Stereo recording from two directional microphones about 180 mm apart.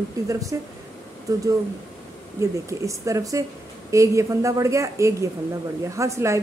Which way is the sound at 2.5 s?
15° right (ahead or behind).